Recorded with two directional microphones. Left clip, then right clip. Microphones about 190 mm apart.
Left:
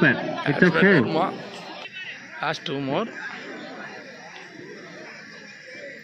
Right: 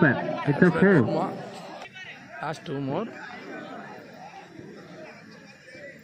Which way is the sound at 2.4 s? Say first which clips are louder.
Left 5 dB; 5° right (ahead or behind).